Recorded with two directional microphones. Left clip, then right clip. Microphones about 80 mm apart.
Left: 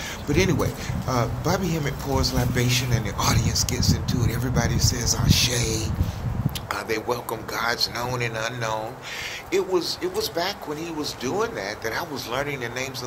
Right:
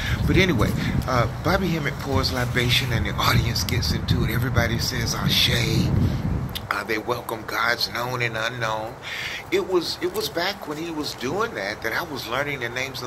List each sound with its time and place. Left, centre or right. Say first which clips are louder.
0.3 s speech: right 2 dB; left
6.7 s speech: right 1 dB; left